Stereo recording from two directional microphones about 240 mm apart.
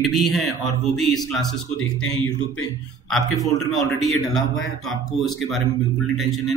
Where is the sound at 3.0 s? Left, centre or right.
Centre.